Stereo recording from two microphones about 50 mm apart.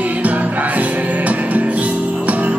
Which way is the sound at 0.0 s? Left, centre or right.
Right.